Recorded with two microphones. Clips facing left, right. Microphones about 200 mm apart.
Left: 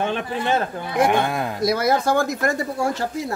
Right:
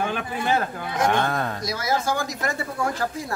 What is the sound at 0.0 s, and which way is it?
Speech, 25° left (ahead or behind).